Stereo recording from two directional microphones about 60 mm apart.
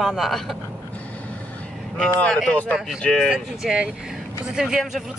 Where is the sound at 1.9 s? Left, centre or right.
Centre.